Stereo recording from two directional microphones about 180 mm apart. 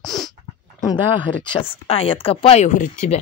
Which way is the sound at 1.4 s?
30° left (ahead or behind).